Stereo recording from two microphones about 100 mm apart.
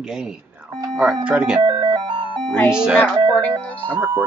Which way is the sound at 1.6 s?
50° right (ahead or behind).